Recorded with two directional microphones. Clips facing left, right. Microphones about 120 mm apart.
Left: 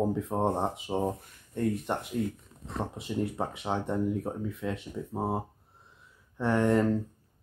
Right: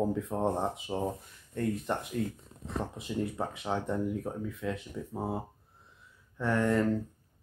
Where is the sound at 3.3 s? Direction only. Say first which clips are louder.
Left 2 dB; 20° left (ahead or behind).